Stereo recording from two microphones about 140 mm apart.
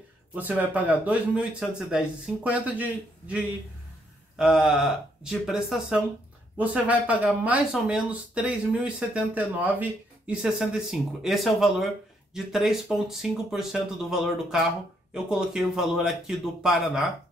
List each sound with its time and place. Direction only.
0.3 s speech: 10° right (ahead or behind)